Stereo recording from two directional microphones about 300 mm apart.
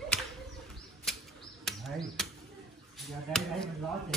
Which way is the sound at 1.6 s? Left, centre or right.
Centre.